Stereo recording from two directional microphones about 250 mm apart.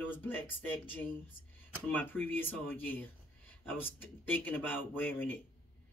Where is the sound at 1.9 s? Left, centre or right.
Centre.